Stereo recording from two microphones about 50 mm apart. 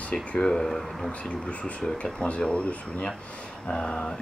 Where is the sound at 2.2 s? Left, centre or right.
Left.